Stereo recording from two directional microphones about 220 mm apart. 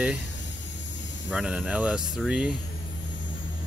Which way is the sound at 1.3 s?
5° right (ahead or behind).